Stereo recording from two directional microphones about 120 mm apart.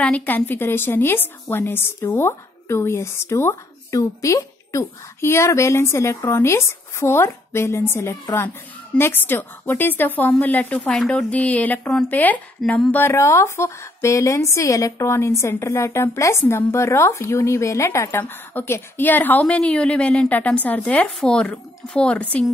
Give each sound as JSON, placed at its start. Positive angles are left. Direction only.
{"t": 0.0, "sound": "a woman's voice", "side_deg": 10}